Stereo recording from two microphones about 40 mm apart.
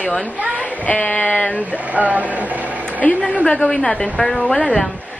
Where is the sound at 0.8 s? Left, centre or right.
Left.